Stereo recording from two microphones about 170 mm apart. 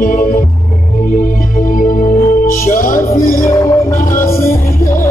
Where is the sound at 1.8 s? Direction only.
50° left (ahead or behind).